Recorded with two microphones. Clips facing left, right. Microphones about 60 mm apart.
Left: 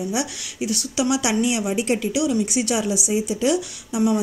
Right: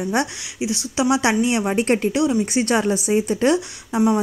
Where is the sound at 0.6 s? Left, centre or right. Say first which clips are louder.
Right 2 dB; right.